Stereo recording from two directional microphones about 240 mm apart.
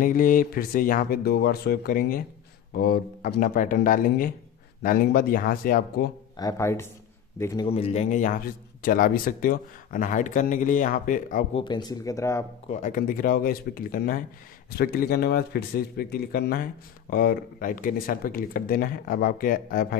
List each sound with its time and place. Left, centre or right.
0.0 s speech: left
6.3 s speech: centre
7.6 s a man's voice: left
11.6 s speech: centre
12.6 s speech: left